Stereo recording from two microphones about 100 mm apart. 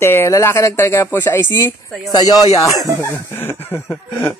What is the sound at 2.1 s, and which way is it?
Speech, 40° left (ahead or behind).